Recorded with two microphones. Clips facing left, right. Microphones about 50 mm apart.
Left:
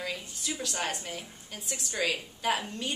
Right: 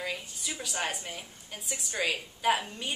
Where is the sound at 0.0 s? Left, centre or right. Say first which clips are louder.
Even; centre.